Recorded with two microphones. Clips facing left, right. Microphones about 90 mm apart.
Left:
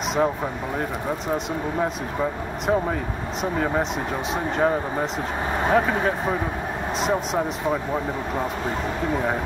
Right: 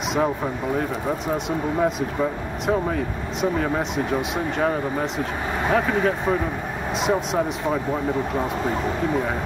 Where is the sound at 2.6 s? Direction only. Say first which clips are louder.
Even; centre (ahead or behind).